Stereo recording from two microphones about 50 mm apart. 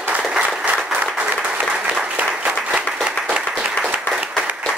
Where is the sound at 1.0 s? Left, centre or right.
Right.